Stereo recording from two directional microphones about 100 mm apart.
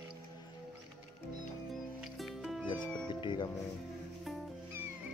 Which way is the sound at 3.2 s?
50° left (ahead or behind).